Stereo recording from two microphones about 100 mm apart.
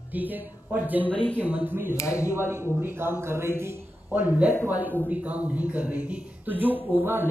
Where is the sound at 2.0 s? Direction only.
30° left (ahead or behind).